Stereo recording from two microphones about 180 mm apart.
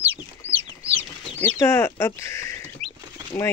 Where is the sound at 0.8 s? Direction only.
35° right (ahead or behind).